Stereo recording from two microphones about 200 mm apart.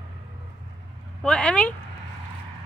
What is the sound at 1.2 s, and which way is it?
Speech, 5° left (ahead or behind).